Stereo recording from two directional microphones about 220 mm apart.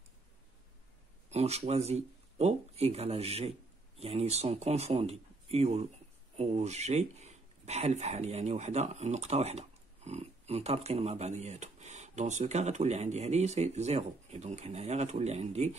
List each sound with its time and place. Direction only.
1.3 s speech: 30° right (ahead or behind)